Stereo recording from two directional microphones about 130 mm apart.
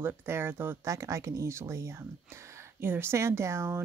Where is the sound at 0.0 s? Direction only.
15° right (ahead or behind).